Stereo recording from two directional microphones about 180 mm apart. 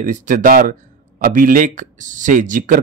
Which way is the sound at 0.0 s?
45° right (ahead or behind).